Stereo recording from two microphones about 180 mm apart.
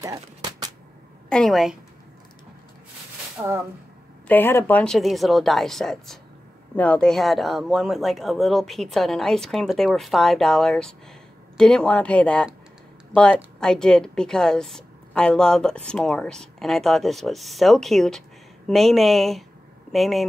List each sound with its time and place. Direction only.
0.0 s speech: 20° right (ahead or behind)
1.3 s a woman's voice: centre (ahead or behind)
3.3 s speech: 15° right (ahead or behind)
4.3 s a woman's voice: 10° left (ahead or behind)